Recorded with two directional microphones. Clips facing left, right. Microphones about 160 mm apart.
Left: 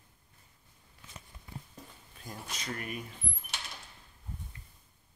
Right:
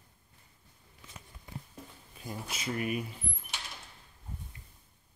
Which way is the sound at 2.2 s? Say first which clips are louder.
Right 3 dB; 5° right (ahead or behind).